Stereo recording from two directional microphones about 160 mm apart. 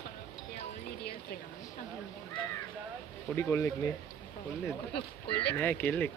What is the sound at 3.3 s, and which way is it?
Speech, 15° left (ahead or behind).